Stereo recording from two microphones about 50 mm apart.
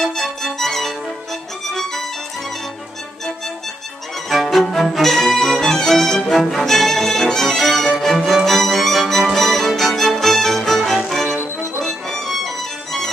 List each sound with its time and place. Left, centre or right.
0.0 s music: centre
4.3 s music: centre